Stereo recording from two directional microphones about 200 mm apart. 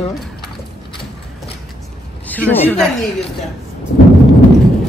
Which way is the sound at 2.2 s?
10° left (ahead or behind).